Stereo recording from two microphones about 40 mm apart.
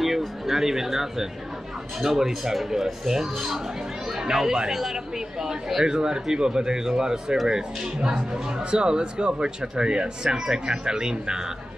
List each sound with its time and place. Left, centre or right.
0.0 s speech: centre